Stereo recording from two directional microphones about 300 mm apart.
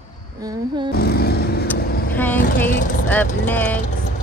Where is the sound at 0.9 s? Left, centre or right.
Left.